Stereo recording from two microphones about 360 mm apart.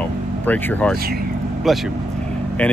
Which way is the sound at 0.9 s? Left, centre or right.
Right.